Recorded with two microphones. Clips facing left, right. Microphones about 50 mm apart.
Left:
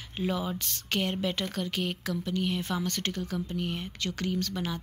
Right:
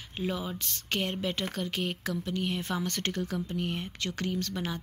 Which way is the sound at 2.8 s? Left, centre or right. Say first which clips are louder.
Even; right.